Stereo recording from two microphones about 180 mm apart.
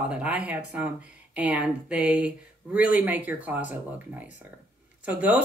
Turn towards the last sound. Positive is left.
turn(degrees=-10)  # may be behind; listen again after turning